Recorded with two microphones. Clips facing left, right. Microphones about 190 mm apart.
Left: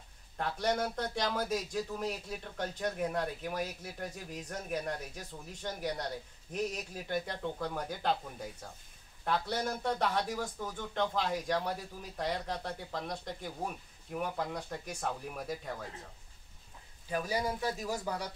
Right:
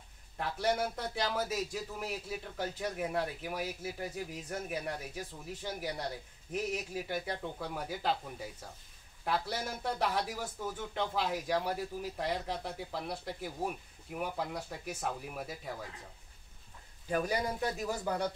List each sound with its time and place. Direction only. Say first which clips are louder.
0.4 s a man's voice: even; 5° right (ahead or behind)